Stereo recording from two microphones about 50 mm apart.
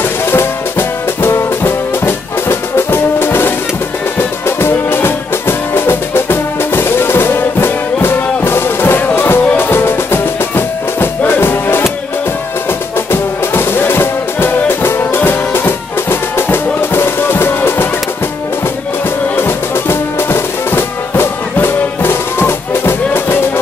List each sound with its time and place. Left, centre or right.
0.3 s music: left
13.1 s music: left
19.3 s music: left